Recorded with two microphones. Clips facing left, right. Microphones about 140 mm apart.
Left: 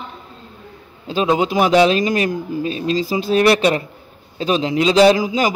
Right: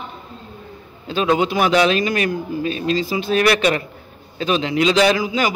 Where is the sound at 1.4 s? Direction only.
30° left (ahead or behind).